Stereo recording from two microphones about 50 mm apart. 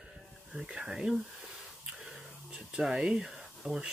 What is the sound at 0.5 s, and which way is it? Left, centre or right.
Speech, centre.